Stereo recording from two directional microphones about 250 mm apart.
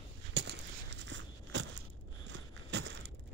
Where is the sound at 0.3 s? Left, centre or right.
Right.